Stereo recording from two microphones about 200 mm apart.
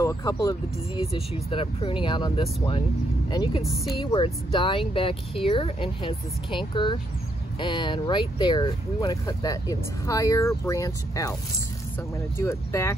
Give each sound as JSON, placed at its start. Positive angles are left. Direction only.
{"t": 0.0, "sound": "speech", "side_deg": 15}
{"t": 12.4, "sound": "speech", "side_deg": 15}